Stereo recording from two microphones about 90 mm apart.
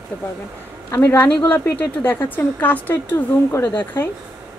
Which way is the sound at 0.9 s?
25° left (ahead or behind).